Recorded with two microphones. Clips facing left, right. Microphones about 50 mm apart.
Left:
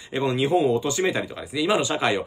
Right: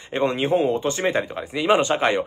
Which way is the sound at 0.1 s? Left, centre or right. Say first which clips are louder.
Right 1 dB; right.